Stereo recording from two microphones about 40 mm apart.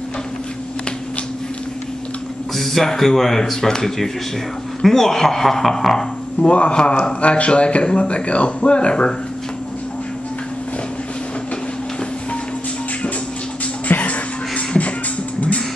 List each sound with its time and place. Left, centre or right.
2.5 s speech: centre
6.4 s speech: left
13.8 s music: left